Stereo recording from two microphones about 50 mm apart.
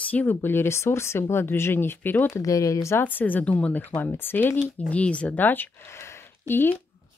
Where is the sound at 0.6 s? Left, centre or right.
Left.